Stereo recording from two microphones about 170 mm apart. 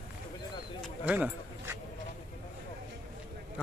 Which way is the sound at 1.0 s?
10° right (ahead or behind).